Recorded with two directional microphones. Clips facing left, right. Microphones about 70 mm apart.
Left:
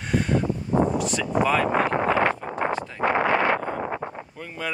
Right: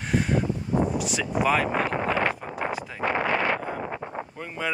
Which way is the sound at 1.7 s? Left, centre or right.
Left.